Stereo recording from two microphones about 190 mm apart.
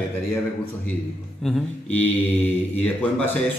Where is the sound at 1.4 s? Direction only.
5° left (ahead or behind).